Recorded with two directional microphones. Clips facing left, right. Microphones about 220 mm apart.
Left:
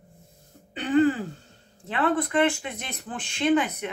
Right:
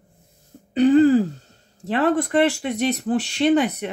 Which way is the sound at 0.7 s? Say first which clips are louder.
Right 7 dB; 35° right (ahead or behind).